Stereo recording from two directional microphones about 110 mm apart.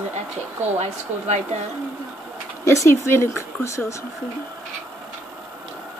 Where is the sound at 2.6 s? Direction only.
25° left (ahead or behind).